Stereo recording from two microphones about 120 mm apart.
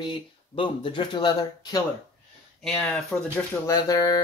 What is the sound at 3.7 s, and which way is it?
Speech, 30° left (ahead or behind).